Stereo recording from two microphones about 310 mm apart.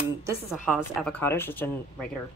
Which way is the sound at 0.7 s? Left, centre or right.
Centre.